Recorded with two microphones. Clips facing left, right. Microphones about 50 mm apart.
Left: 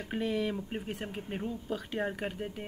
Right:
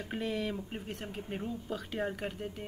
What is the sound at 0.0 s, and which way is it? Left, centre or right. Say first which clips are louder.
Speech: left 3 dB; centre.